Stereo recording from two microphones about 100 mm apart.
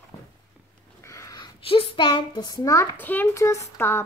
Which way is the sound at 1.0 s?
30° left (ahead or behind).